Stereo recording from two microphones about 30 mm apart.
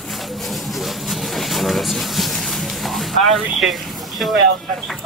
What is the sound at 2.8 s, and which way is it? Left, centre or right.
Rub, centre.